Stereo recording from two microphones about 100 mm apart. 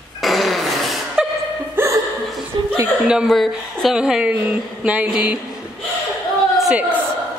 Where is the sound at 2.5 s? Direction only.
55° right (ahead or behind).